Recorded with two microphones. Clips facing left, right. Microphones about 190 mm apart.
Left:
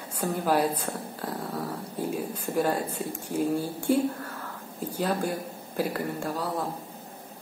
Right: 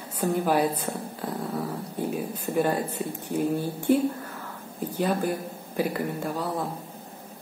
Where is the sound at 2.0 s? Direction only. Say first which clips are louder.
Right 1 dB; centre (ahead or behind).